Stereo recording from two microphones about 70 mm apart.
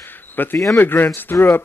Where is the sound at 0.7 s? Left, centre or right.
Left.